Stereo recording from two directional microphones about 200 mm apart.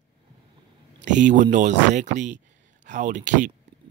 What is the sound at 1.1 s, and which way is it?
Speech, 40° right (ahead or behind).